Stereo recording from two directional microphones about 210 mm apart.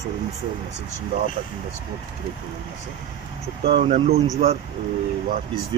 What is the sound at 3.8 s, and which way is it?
Speech, 30° right (ahead or behind).